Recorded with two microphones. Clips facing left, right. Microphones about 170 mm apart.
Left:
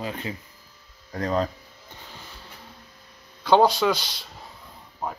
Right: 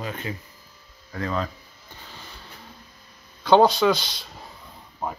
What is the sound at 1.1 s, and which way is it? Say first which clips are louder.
Speech: left 3 dB; 40° left (ahead or behind).